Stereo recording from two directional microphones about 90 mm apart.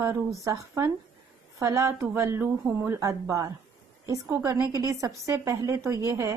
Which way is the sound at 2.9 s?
40° right (ahead or behind).